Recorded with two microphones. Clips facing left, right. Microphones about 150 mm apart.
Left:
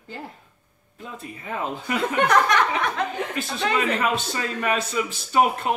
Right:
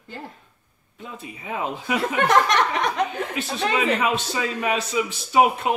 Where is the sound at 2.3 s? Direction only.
20° right (ahead or behind).